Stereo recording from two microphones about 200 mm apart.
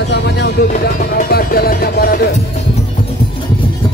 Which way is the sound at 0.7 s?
45° left (ahead or behind).